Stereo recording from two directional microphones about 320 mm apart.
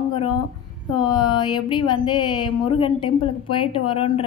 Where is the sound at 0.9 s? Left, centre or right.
Centre.